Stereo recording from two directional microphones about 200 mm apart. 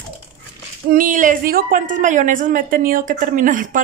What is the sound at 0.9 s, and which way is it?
A woman's voice, 45° right (ahead or behind).